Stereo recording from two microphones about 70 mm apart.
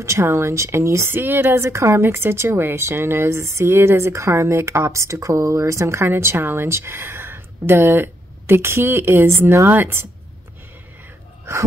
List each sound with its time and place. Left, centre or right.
0.0 s a woman's voice: right
11.5 s a woman's voice: right